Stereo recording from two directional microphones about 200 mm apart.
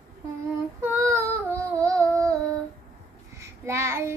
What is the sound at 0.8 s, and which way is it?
Child singing, 10° right (ahead or behind).